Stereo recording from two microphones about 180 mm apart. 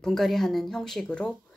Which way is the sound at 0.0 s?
Centre (ahead or behind).